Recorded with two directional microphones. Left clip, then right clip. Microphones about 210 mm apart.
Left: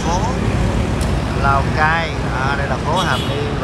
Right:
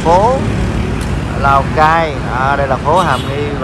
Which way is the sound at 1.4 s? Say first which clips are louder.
Right 6 dB; 10° left (ahead or behind).